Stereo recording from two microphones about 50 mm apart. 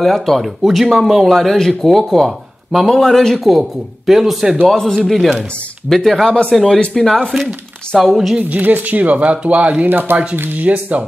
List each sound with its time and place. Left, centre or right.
0.0 s speech: centre
3.0 s speech: centre
4.6 s speech: centre
8.0 s speech: centre
8.5 s speech: right
9.8 s speech: right